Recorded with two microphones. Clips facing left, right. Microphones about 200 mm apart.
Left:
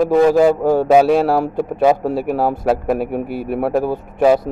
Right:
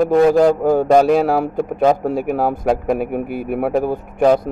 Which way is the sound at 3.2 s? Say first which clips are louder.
Even; 50° right (ahead or behind).